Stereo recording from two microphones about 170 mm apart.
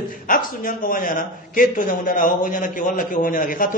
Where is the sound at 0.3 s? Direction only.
55° left (ahead or behind).